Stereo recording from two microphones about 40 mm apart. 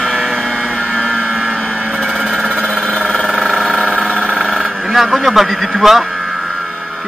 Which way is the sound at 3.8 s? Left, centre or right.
Right.